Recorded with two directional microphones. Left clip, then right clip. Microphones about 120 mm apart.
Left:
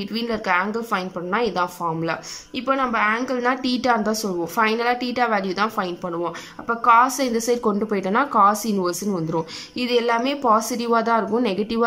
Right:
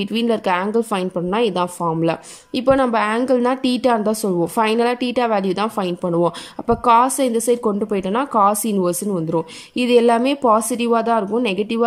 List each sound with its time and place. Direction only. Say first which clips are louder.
0.0 s a woman's voice: right 6 dB; 30° right (ahead or behind)
7.2 s a woman's voice: right 4 dB; 25° right (ahead or behind)